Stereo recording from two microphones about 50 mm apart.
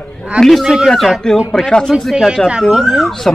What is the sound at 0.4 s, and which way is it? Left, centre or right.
A man's voice, centre.